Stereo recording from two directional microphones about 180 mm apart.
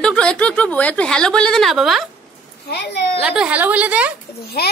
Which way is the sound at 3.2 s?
5° right (ahead or behind).